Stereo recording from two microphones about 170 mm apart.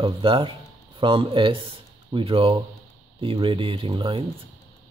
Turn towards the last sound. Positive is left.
turn(degrees=-30)  # may be behind; listen again after turning